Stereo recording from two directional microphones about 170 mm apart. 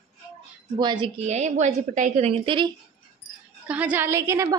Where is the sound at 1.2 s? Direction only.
40° right (ahead or behind).